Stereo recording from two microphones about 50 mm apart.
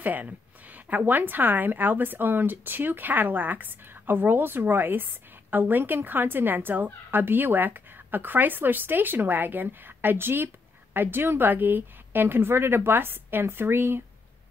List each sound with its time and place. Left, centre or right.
0.0 s a woman's voice: right